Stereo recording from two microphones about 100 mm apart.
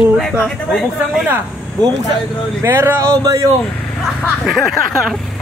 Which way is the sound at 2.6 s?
25° right (ahead or behind).